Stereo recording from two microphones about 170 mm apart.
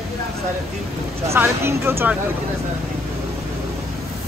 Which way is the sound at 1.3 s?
15° right (ahead or behind).